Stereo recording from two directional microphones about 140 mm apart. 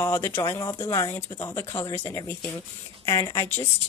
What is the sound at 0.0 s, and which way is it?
Speech, 20° left (ahead or behind).